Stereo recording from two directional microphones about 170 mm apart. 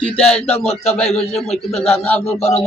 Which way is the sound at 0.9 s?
5° left (ahead or behind).